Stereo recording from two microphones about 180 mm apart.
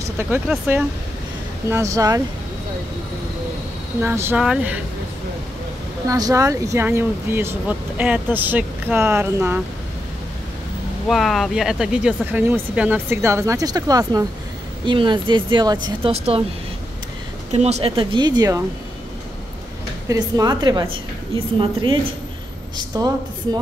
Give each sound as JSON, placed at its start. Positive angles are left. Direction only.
{"t": 0.0, "sound": "vehicle", "side_deg": -15}
{"t": 1.7, "sound": "speech", "side_deg": -15}
{"t": 4.0, "sound": "speech", "side_deg": -15}
{"t": 6.0, "sound": "speech", "side_deg": -20}
{"t": 11.1, "sound": "speech", "side_deg": 0}
{"t": 17.5, "sound": "speech", "side_deg": -35}
{"t": 20.1, "sound": "speech", "side_deg": -20}